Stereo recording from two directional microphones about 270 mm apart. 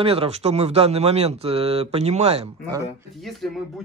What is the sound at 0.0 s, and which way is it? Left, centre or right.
Speech, right.